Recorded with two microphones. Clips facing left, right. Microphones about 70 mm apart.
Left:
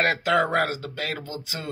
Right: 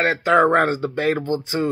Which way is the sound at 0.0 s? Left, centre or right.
Centre.